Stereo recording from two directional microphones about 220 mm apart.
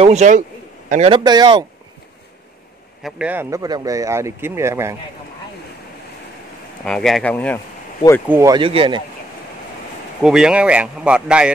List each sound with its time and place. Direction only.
0.0 s a man's voice: 30° right (ahead or behind)
3.0 s speech: centre (ahead or behind)
6.8 s speech: 5° left (ahead or behind)
8.3 s a man's voice: 15° right (ahead or behind)
10.2 s speech: 5° right (ahead or behind)